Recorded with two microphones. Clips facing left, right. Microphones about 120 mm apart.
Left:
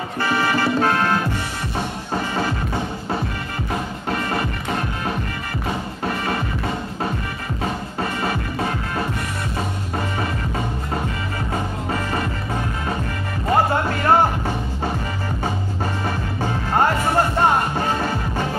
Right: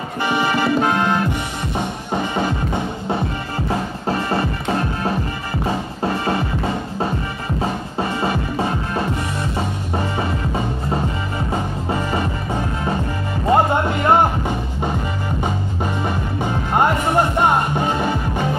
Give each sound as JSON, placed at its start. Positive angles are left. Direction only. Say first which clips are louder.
{"t": 0.2, "sound": "music", "louder": "right 1 dB", "side_deg": -15}
{"t": 2.3, "sound": "music", "louder": "right 2 dB", "side_deg": -20}
{"t": 13.5, "sound": "music", "louder": "right 3 dB", "side_deg": -20}
{"t": 16.3, "sound": "music", "louder": "right 1 dB", "side_deg": -15}